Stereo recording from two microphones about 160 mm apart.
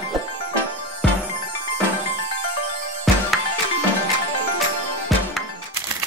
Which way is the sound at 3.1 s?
Centre (ahead or behind).